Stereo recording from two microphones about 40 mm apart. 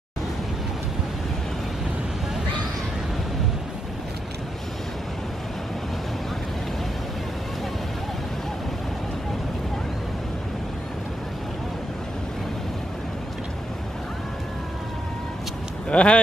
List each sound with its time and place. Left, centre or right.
15.9 s speech: left